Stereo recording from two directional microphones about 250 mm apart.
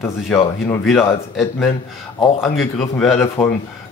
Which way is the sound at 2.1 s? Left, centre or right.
Centre.